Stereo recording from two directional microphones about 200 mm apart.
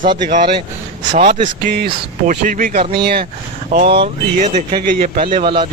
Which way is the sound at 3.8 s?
25° right (ahead or behind).